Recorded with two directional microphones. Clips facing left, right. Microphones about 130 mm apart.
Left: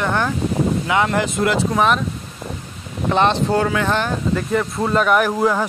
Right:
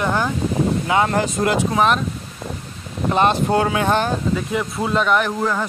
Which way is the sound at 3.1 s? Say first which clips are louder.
Even; 5° right (ahead or behind).